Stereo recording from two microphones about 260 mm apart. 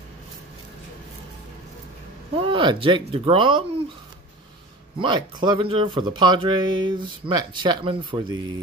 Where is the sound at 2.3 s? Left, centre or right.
Centre.